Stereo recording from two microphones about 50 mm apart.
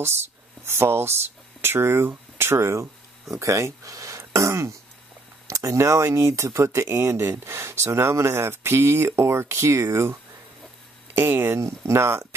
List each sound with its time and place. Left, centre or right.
0.0 s speech: right
11.2 s speech: right
11.5 s speech: right